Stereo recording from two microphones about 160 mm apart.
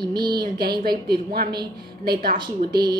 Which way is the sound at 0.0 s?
25° right (ahead or behind).